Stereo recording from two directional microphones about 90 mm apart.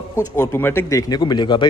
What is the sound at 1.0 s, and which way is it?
Speech, 50° left (ahead or behind).